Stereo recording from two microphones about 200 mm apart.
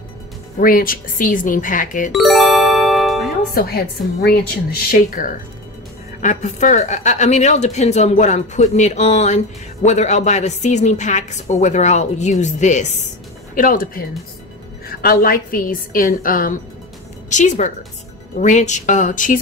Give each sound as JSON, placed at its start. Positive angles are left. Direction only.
{"t": 0.6, "sound": "a woman's voice", "side_deg": 45}
{"t": 2.1, "sound": "music", "side_deg": 0}
{"t": 3.5, "sound": "a woman's voice", "side_deg": 50}
{"t": 6.2, "sound": "a woman's voice", "side_deg": 35}